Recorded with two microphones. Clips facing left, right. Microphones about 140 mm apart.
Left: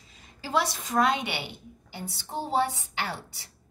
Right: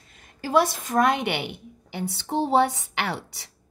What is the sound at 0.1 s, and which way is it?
A woman's voice, 50° right (ahead or behind).